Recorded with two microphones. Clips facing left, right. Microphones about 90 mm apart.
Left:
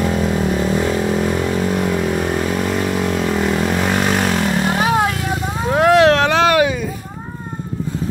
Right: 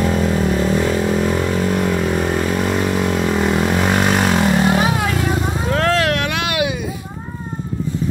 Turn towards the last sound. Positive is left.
turn(degrees=40)  # may be behind; listen again after turning